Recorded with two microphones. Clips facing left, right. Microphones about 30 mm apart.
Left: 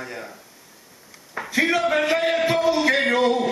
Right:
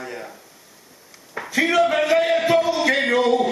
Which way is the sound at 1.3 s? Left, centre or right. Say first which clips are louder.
Right 1 dB; centre.